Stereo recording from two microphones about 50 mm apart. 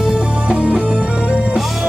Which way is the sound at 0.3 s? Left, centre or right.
Right.